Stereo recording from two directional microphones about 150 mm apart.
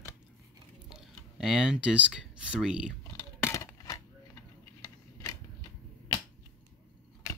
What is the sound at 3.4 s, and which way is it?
Scissors, 20° left (ahead or behind).